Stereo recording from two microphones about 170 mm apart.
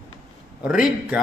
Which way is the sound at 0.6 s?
5° right (ahead or behind).